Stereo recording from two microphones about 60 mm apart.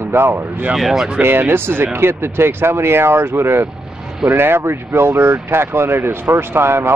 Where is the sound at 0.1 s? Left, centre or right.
Right.